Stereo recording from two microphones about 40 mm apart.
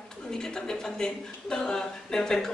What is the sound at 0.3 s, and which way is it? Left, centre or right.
A woman's voice, centre.